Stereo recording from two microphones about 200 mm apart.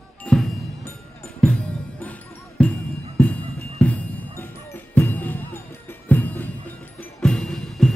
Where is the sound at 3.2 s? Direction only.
5° left (ahead or behind).